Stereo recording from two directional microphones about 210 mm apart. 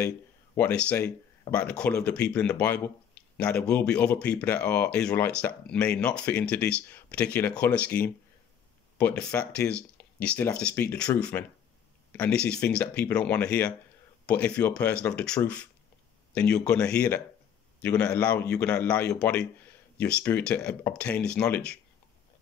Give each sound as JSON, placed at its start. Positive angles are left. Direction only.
{"t": 0.6, "sound": "a man's voice", "side_deg": 5}